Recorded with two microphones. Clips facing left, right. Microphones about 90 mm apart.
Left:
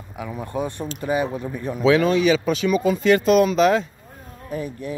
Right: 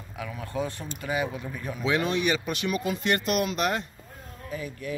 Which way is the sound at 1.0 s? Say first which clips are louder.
Left 6 dB; 30° left (ahead or behind).